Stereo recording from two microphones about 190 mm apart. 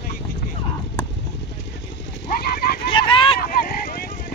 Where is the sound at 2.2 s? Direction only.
55° left (ahead or behind).